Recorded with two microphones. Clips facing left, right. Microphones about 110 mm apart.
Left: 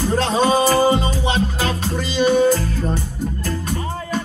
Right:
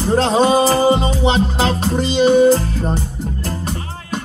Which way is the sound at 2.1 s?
45° left (ahead or behind).